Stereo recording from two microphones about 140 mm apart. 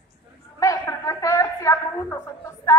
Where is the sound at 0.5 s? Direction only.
25° left (ahead or behind).